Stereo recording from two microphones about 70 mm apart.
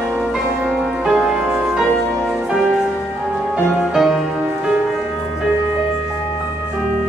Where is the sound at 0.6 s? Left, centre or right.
Centre.